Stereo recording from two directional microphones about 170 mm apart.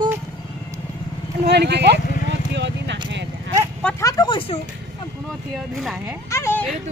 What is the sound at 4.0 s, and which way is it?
Speech, 20° left (ahead or behind).